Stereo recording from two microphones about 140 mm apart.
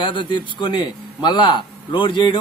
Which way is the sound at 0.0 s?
35° left (ahead or behind).